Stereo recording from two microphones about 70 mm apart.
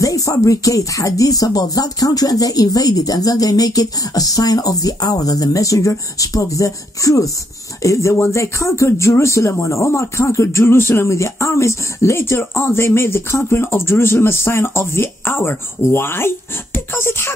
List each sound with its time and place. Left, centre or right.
0.0 s speech: left